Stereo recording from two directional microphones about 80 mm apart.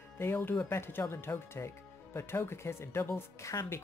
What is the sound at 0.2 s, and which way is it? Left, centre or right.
Speech, left.